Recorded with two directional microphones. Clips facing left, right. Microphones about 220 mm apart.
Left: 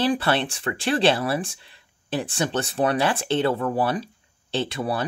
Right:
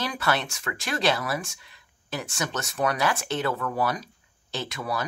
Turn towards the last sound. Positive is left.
turn(degrees=30)  # may be behind; listen again after turning